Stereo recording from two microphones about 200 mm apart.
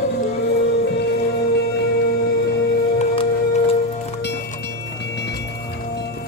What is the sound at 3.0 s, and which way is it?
Music, 30° left (ahead or behind).